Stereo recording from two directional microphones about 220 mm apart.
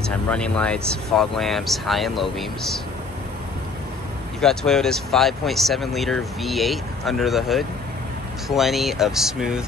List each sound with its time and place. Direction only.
0.0 s speech: 5° left (ahead or behind)
4.4 s speech: centre (ahead or behind)